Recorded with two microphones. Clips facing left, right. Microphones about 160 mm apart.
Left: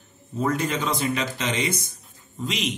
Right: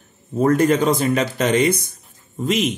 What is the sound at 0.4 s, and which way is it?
Speech, 50° right (ahead or behind).